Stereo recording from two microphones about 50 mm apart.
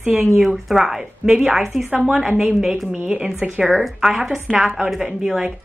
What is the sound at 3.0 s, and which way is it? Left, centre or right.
Speech, right.